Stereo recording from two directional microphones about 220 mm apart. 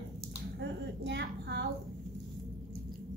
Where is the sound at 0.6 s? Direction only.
50° right (ahead or behind).